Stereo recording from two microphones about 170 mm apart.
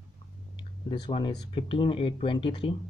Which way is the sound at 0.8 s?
30° left (ahead or behind).